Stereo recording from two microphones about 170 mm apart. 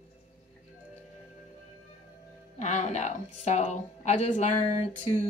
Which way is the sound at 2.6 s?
45° left (ahead or behind).